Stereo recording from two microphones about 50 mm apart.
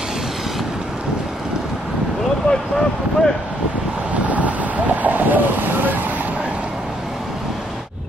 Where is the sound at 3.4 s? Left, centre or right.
Right; by 7.9 s centre.